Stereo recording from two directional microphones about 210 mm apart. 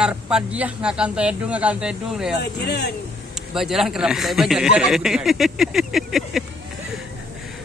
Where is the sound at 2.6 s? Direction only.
55° left (ahead or behind).